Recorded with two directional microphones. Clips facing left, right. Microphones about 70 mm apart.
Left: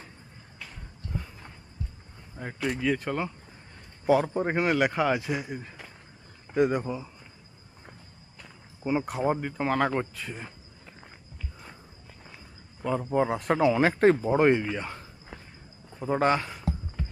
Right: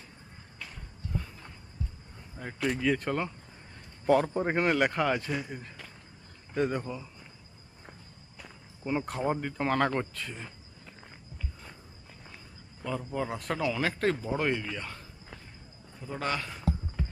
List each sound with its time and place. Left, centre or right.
2.3 s a man's voice: centre
8.8 s a man's voice: centre
12.8 s speech: left
16.0 s speech: left